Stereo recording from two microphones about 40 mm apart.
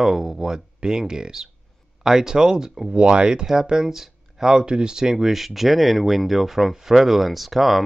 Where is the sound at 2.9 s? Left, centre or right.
Right.